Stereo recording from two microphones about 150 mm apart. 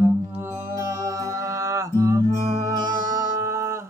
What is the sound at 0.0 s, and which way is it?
Music, 15° right (ahead or behind).